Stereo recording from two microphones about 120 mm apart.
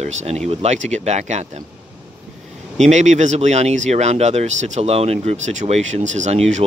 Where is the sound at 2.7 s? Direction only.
75° right (ahead or behind).